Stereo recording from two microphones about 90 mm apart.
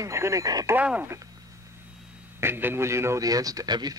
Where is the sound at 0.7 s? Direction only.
15° right (ahead or behind).